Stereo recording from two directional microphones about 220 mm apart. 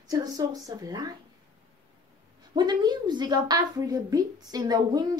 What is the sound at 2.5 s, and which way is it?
A woman's voice, 20° right (ahead or behind).